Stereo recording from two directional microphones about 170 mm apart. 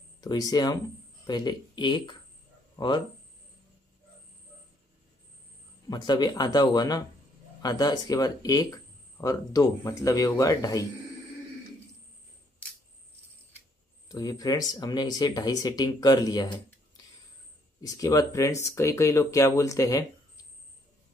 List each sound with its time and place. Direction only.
0.2 s speech: 20° left (ahead or behind)
5.9 s speech: 25° left (ahead or behind)
14.0 s speech: 20° left (ahead or behind)